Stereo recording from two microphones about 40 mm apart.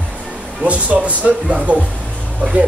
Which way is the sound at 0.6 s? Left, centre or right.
Right.